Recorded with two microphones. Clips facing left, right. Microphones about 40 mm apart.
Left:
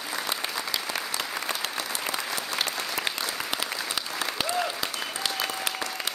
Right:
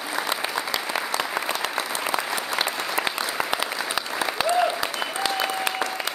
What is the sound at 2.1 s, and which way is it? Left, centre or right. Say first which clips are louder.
Applause: right 5 dB; centre.